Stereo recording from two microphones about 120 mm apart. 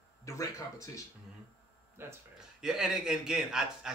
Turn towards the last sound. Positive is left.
turn(degrees=-5)  # may be behind; listen again after turning